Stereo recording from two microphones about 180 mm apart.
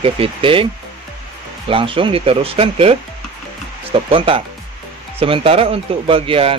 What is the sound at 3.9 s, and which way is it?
Speech, 30° right (ahead or behind).